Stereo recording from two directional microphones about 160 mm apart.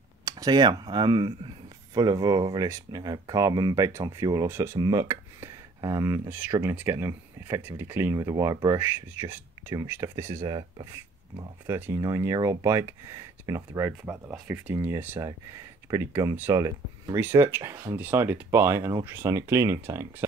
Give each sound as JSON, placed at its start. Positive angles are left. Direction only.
{"t": 0.2, "sound": "speech", "side_deg": -20}
{"t": 10.4, "sound": "speech", "side_deg": -30}
{"t": 11.6, "sound": "speech", "side_deg": -15}